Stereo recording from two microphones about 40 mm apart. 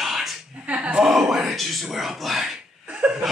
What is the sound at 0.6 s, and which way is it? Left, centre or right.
Slap, right.